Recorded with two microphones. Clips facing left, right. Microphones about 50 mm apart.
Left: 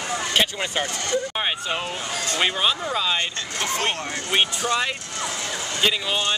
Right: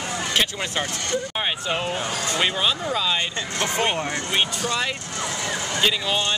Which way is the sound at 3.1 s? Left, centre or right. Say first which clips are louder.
Right 1 dB; centre.